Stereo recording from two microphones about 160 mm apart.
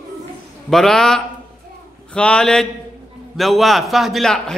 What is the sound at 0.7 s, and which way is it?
A man's voice, 5° left (ahead or behind).